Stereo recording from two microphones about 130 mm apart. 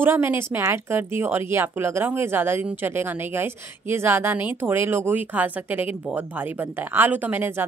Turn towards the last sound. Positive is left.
turn(degrees=-15)  # may be behind; listen again after turning